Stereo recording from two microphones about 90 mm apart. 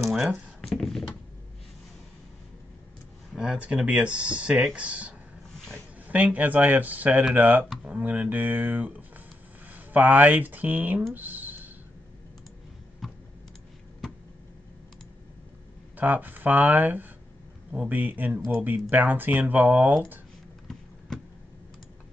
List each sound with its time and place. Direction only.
0.1 s speech: centre (ahead or behind)
3.3 s speech: 10° right (ahead or behind)
11.1 s a sound: 20° right (ahead or behind)
13.0 s clicking: centre (ahead or behind)
16.0 s speech: 20° right (ahead or behind)